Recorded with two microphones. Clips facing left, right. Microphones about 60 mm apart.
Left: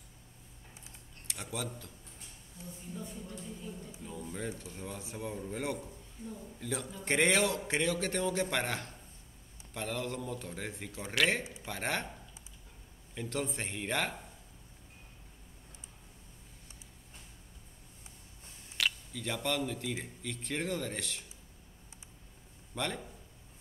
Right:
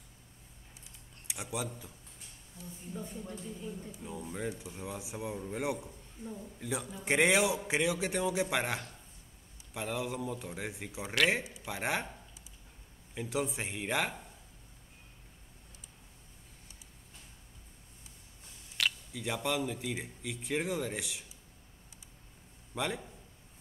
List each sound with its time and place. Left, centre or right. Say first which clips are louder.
1.2 s speech: right 2 dB; centre
2.9 s speech: right 2 dB; right
4.0 s speech: right 2 dB; centre
13.1 s speech: right 2 dB; centre
18.8 s a sound: even; centre
19.1 s speech: right 2 dB; centre
22.8 s speech: right 1 dB; centre